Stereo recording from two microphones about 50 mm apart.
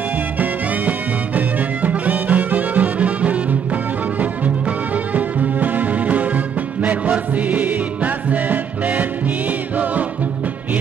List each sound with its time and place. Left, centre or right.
0.4 s music: right